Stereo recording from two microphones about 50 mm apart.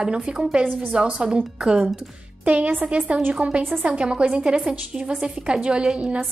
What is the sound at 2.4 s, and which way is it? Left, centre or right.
A woman's voice, right.